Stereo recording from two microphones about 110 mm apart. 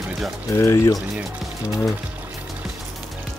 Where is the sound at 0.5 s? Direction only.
25° left (ahead or behind).